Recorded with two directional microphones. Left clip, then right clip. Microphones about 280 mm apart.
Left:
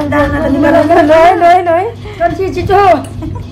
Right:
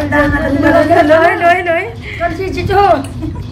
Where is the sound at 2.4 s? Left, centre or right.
Left.